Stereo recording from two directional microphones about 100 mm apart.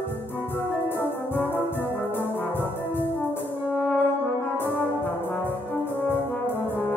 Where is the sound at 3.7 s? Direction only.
20° left (ahead or behind).